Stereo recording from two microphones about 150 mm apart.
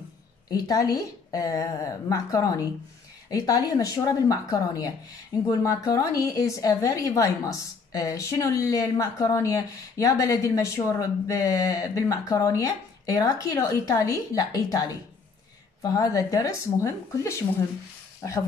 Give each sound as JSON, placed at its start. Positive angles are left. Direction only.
{"t": 0.5, "sound": "a woman's voice", "side_deg": 25}